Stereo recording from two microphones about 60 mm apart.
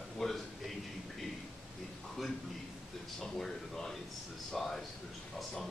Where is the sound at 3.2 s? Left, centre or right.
Centre.